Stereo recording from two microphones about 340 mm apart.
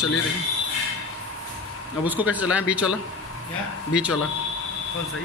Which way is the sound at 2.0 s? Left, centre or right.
Centre.